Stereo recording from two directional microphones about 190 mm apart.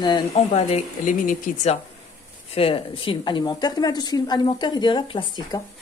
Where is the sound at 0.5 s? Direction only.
35° left (ahead or behind).